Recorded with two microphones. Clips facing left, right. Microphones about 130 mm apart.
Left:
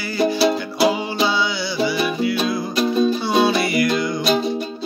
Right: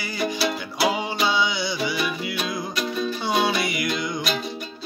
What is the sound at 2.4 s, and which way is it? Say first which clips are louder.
Music: left 7 dB; 30° left (ahead or behind).